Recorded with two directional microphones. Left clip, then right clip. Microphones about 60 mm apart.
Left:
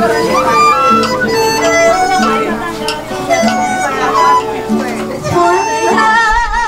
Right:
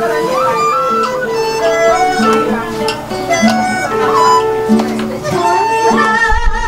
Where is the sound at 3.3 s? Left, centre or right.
Centre.